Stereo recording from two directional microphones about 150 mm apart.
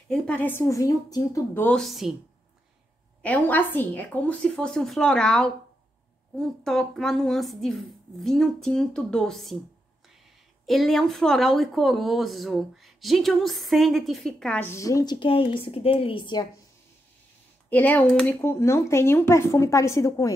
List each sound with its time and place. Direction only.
0.1 s a woman's voice: 10° left (ahead or behind)
3.2 s a woman's voice: 10° left (ahead or behind)
10.7 s speech: centre (ahead or behind); by 16.4 s 35° left (ahead or behind)
17.6 s a woman's voice: 10° left (ahead or behind)